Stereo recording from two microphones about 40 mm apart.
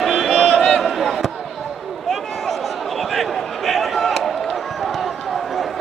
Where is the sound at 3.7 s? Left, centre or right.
Centre.